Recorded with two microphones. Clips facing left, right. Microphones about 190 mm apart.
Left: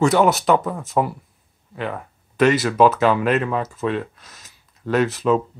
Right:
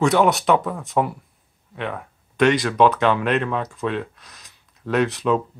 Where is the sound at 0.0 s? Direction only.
Centre (ahead or behind).